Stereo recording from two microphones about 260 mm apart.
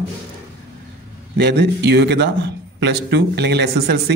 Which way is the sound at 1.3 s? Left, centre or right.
Right.